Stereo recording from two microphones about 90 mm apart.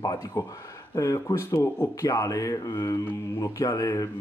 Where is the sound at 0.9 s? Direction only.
40° left (ahead or behind).